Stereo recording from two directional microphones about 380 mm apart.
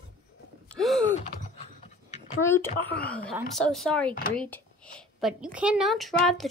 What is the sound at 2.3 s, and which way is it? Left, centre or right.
Speech, centre.